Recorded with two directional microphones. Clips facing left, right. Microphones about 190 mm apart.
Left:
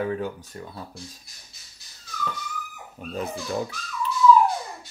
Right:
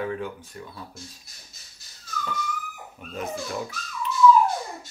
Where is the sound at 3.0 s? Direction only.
35° left (ahead or behind).